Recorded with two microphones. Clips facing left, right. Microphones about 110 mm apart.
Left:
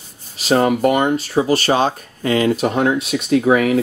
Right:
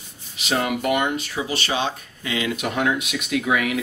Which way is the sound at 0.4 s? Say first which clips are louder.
Left 9 dB; 40° left (ahead or behind).